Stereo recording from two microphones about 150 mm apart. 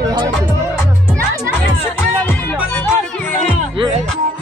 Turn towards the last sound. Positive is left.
turn(degrees=15)  # may be behind; listen again after turning